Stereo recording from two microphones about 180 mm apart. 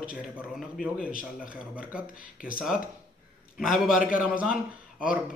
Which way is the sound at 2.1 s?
50° left (ahead or behind).